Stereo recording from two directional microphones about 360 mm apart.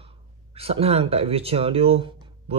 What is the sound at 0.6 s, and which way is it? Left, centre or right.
Speech, centre.